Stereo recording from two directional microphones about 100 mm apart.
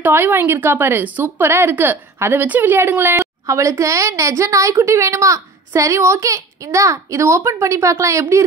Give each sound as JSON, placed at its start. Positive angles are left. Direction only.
{"t": 0.0, "sound": "a woman's voice", "side_deg": -20}